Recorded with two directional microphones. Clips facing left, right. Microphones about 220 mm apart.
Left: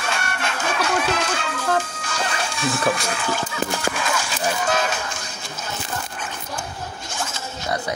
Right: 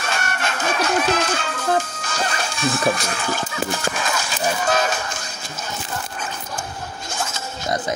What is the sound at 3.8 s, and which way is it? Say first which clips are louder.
Speech: even; 45° right (ahead or behind).